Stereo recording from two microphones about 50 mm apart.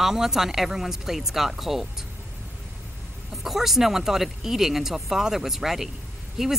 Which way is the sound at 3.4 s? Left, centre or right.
Centre.